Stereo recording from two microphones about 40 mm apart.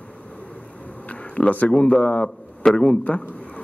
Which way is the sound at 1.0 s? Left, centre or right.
Left.